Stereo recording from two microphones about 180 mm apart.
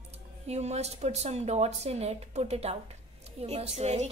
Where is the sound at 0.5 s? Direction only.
35° right (ahead or behind).